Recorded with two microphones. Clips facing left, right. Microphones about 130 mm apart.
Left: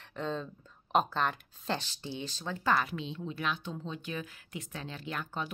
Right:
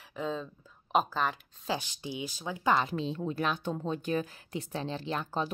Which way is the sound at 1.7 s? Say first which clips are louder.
Right 2 dB; 15° right (ahead or behind).